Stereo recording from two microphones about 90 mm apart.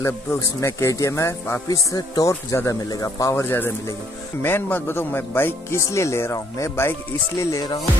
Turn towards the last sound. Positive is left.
turn(degrees=35)  # may be behind; listen again after turning